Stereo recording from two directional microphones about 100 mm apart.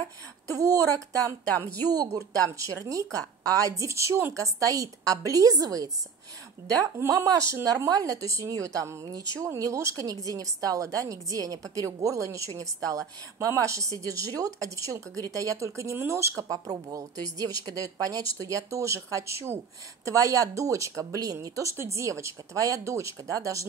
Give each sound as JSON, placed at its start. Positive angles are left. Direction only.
{"t": 0.5, "sound": "a woman's voice", "side_deg": -35}
{"t": 1.5, "sound": "a woman's voice", "side_deg": 20}
{"t": 2.1, "sound": "a woman's voice", "side_deg": -35}